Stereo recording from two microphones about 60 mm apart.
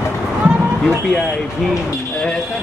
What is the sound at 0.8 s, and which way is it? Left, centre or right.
Speech, centre.